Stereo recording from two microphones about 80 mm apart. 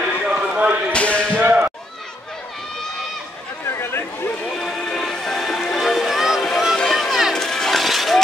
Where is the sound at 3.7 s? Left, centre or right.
Left.